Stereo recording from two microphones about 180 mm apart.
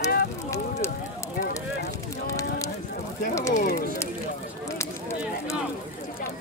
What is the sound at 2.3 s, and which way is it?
Speech, 20° left (ahead or behind).